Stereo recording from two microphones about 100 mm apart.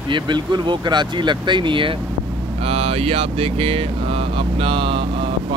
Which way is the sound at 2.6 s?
75° right (ahead or behind).